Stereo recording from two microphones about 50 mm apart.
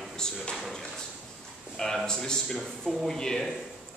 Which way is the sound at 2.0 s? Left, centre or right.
Centre.